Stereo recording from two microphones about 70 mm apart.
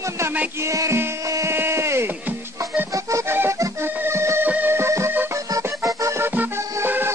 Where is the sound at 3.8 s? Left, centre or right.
Right.